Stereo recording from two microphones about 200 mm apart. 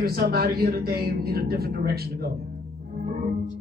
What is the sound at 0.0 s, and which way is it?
Speech, 50° right (ahead or behind).